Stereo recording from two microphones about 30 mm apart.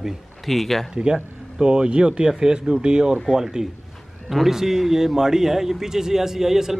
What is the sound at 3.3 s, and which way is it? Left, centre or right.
A man's voice, centre.